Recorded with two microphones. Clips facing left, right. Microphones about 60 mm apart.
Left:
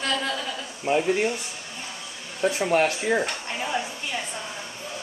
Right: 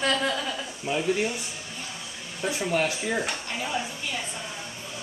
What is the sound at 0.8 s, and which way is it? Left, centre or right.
Speech, left.